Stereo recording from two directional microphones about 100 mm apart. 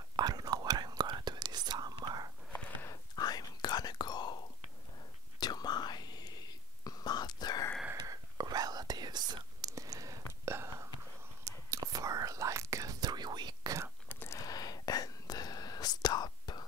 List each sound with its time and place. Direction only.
0.1 s whispering: 40° right (ahead or behind)
2.9 s whispering: 40° left (ahead or behind)
5.4 s whispering: 45° left (ahead or behind)
8.0 s whispering: 40° right (ahead or behind)
14.0 s whispering: 20° left (ahead or behind)
14.4 s whispering: 40° left (ahead or behind)